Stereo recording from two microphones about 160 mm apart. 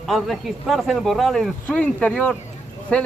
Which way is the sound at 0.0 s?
Centre (ahead or behind).